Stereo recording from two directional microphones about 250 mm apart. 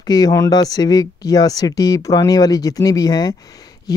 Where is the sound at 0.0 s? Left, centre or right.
Centre.